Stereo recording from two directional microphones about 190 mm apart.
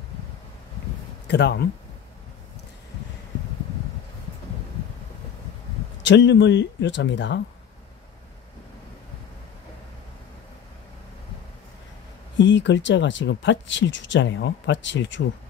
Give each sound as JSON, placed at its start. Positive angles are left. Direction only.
{"t": 1.2, "sound": "speech", "side_deg": 65}
{"t": 6.0, "sound": "speech", "side_deg": 70}
{"t": 12.4, "sound": "speech", "side_deg": 70}